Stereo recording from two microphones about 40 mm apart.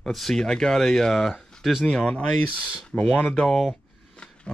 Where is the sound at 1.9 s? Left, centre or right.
Left.